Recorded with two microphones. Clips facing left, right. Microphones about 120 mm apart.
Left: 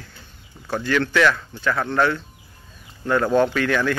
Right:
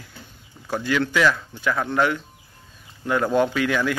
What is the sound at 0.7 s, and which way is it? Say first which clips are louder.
Speech: left 1 dB; 10° right (ahead or behind).